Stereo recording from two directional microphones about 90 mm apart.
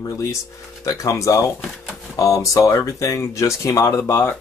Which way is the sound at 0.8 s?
35° left (ahead or behind).